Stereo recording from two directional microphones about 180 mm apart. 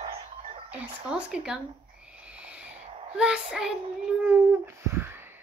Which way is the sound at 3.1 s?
5° right (ahead or behind).